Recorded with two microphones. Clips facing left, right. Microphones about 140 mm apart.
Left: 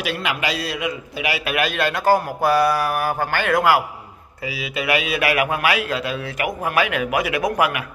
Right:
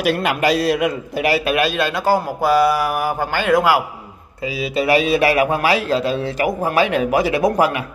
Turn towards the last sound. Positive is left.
turn(degrees=-30)  # may be behind; listen again after turning